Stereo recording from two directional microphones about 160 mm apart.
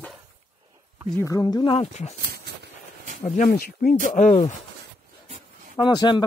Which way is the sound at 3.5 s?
70° left (ahead or behind).